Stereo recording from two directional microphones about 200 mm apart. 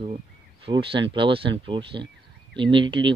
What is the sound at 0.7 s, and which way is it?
Speech, 25° right (ahead or behind).